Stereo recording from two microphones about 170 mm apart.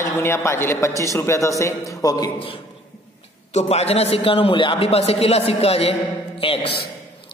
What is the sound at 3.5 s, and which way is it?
A man's voice, 40° left (ahead or behind).